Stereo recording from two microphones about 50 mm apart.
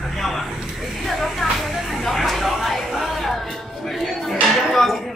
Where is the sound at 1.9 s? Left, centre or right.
Centre.